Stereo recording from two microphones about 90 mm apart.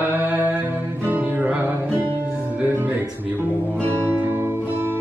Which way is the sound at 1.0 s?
20° right (ahead or behind).